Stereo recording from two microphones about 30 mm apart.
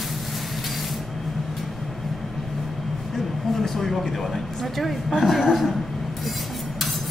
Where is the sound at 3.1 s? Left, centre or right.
Centre.